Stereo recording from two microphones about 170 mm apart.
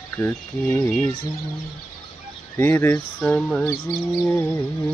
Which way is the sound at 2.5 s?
10° left (ahead or behind).